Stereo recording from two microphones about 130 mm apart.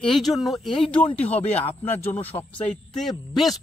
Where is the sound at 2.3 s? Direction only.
35° left (ahead or behind).